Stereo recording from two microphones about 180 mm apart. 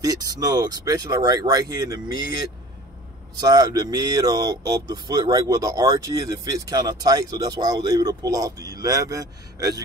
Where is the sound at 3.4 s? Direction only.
20° right (ahead or behind).